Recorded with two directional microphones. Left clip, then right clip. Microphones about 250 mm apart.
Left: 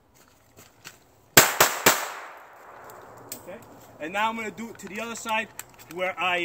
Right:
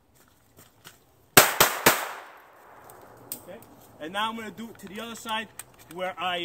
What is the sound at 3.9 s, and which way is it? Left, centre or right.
Speech, centre.